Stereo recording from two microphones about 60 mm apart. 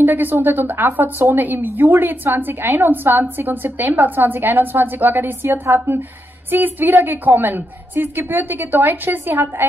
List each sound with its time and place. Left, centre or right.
0.0 s a woman's voice: right